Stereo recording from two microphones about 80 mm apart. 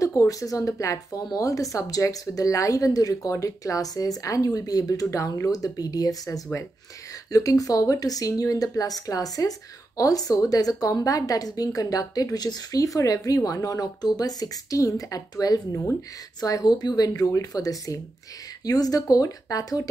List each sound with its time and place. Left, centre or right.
0.0 s speech: left